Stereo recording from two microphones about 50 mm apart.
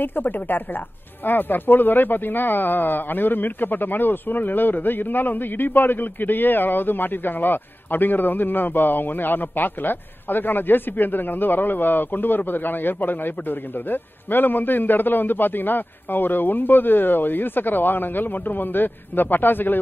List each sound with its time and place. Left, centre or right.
0.0 s a woman's voice: left